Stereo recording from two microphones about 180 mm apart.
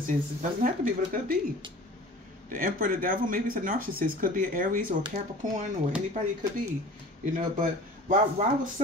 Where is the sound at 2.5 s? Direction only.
50° right (ahead or behind).